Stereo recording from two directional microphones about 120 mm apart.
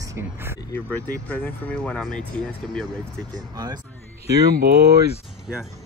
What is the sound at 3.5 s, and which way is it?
Speech, 35° right (ahead or behind).